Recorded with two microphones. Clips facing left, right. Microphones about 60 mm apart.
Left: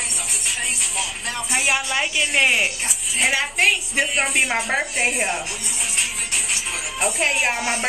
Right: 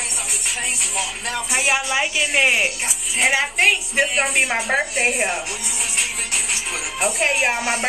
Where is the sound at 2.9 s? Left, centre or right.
Centre.